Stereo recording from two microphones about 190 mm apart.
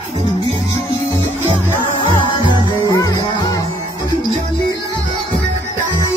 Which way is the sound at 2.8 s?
20° left (ahead or behind).